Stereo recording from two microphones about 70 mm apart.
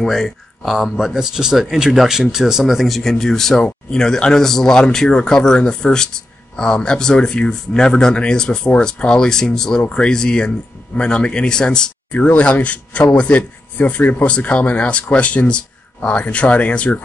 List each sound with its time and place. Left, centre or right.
0.0 s speech: centre